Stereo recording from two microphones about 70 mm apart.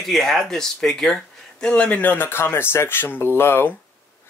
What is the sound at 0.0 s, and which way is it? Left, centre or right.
Speech, centre.